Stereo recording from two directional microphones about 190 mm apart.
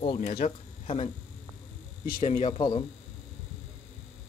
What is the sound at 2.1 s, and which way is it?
Speech, 40° left (ahead or behind).